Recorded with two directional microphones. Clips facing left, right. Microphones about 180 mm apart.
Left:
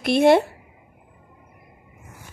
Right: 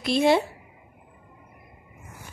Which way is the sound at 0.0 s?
60° left (ahead or behind).